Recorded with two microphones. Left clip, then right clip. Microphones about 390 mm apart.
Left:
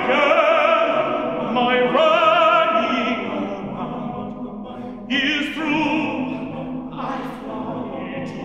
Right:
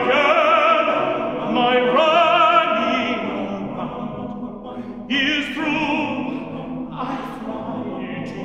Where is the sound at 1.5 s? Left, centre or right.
Right.